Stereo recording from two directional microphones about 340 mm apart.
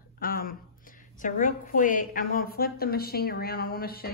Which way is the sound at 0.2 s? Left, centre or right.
Left.